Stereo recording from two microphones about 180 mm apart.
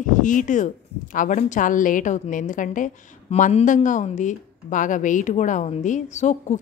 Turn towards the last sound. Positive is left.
turn(degrees=40)  # may be behind; listen again after turning